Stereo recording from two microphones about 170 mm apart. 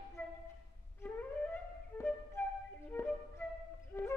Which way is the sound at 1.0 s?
10° left (ahead or behind).